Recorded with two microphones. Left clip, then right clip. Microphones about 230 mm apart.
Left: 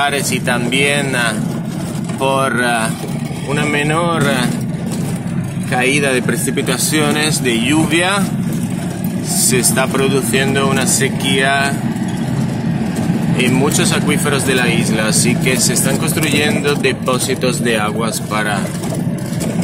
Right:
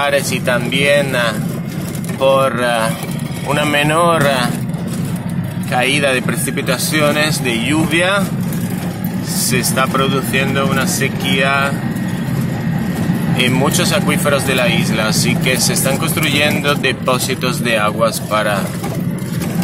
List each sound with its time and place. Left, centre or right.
0.0 s speech: centre
3.5 s speech: centre
5.8 s speech: centre
6.7 s speech: centre
9.5 s speech: centre
13.4 s speech: centre